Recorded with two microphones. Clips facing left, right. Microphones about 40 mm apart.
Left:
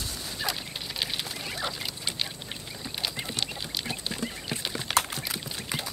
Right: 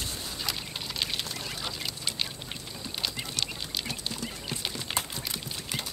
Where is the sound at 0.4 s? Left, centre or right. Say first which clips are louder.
Left 4 dB; centre.